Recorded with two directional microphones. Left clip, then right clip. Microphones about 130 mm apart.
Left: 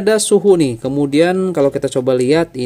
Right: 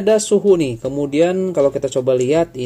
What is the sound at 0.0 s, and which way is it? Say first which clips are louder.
Speech: left 2 dB; 40° left (ahead or behind).